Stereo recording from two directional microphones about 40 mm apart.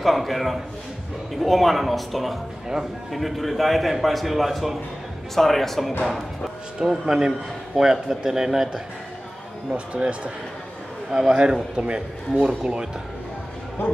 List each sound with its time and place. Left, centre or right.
0.0 s a man's voice: centre
6.8 s speech: centre
9.9 s a man's voice: right
11.1 s a man's voice: centre